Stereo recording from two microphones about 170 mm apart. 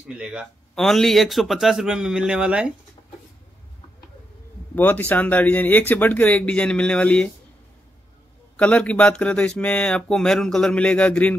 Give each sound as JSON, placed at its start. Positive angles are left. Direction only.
{"t": 0.1, "sound": "speech", "side_deg": -5}
{"t": 4.7, "sound": "speech", "side_deg": 10}
{"t": 8.5, "sound": "speech", "side_deg": 10}